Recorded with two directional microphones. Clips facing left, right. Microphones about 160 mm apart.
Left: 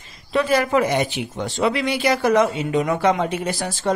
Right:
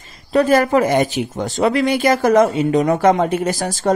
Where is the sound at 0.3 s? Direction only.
45° right (ahead or behind).